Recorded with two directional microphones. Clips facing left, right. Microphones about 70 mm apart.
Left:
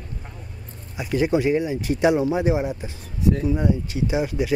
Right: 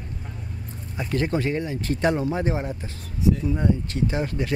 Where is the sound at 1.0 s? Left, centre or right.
Centre.